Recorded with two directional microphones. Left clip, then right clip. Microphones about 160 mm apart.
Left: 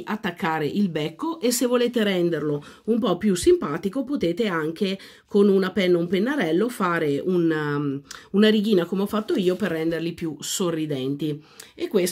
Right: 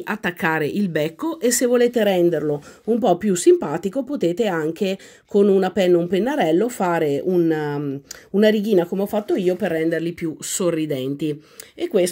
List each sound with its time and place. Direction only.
0.0 s speech: 35° right (ahead or behind); by 12.1 s 15° right (ahead or behind)